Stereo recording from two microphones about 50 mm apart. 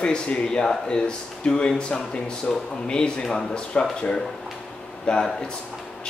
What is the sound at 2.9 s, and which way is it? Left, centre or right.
Speech, centre.